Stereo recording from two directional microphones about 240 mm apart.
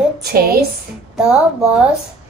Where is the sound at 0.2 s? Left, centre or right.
Right.